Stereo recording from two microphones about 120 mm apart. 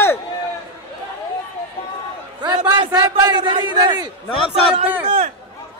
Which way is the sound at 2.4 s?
35° right (ahead or behind).